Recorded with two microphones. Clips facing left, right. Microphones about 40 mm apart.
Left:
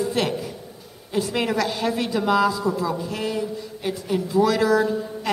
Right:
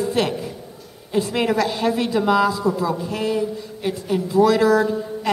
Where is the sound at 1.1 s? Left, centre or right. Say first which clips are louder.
Right 3 dB; right.